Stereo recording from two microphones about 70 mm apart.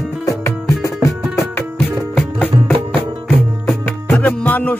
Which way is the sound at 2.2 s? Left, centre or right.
Left.